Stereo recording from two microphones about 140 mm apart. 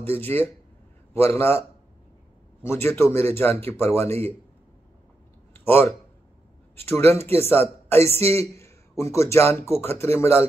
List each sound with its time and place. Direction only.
0.0 s a man's voice: 15° left (ahead or behind)
2.6 s a man's voice: 15° left (ahead or behind)
5.5 s a sound: 15° left (ahead or behind)
6.8 s a man's voice: 15° left (ahead or behind)